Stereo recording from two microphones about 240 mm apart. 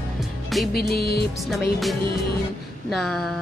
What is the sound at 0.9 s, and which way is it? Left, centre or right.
Music, left.